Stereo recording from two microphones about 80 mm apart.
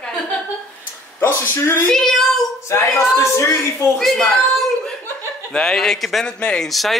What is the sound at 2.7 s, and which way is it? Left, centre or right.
A woman's voice, left.